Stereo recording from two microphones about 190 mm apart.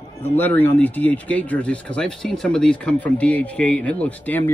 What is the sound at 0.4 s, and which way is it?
Speech, 10° left (ahead or behind).